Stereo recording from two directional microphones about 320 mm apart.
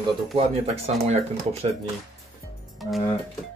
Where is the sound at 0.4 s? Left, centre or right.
Centre.